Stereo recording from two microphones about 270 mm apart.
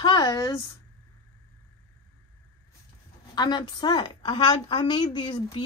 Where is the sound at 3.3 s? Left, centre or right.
Centre.